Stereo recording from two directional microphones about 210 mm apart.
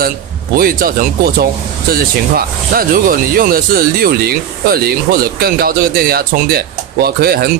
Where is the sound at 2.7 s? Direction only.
45° right (ahead or behind).